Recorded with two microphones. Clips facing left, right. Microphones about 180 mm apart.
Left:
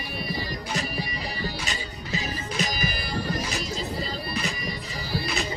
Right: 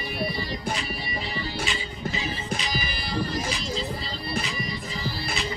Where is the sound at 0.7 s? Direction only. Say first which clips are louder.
Left 2 dB; 45° left (ahead or behind).